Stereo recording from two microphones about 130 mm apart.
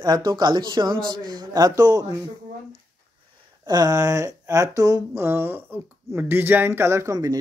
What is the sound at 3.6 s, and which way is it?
Speech, 30° right (ahead or behind).